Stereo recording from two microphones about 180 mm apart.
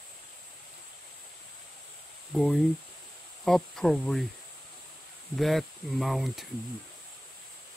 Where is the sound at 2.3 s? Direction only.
Centre (ahead or behind).